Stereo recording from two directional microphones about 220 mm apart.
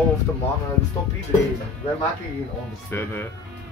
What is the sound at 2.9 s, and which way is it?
Speech, 10° left (ahead or behind).